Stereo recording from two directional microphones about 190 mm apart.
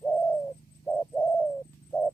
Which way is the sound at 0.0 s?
5° left (ahead or behind).